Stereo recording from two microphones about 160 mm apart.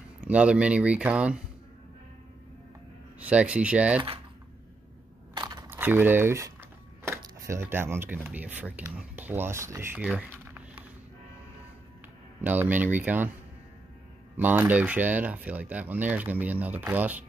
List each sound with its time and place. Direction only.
0.2 s speech: 5° right (ahead or behind)
3.2 s speech: 10° right (ahead or behind)
5.3 s a sound: 25° right (ahead or behind)
5.7 s speech: 10° right (ahead or behind)
10.0 s a sound: 10° right (ahead or behind)
12.4 s speech: 10° right (ahead or behind)
14.3 s speech: 10° right (ahead or behind)